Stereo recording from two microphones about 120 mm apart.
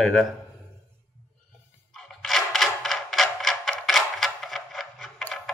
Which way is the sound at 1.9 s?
5° left (ahead or behind).